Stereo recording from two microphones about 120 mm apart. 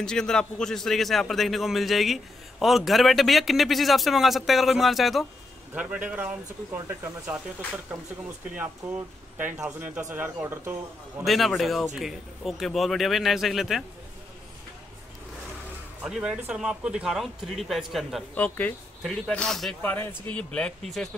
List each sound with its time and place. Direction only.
0.0 s speech: 5° left (ahead or behind)
5.8 s speech: 10° right (ahead or behind)
11.2 s speech: centre (ahead or behind)
16.0 s speech: 5° right (ahead or behind)
18.3 s speech: 15° left (ahead or behind)
19.8 s speech: 15° left (ahead or behind)